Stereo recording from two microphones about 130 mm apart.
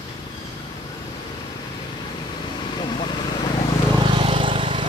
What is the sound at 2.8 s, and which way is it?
Vehicle, 35° left (ahead or behind).